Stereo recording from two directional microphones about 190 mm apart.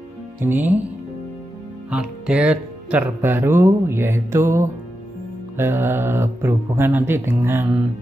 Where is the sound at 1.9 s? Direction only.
5° right (ahead or behind).